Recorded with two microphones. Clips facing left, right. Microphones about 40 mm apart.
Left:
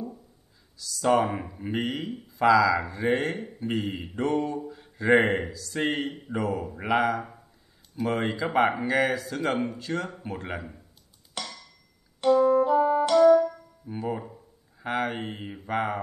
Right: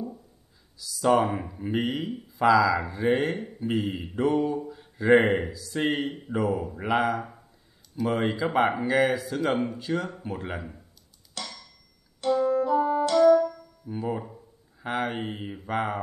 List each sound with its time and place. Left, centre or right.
1.0 s speech: centre
11.4 s a sound: centre
12.4 s music: left
12.7 s music: centre
13.9 s speech: centre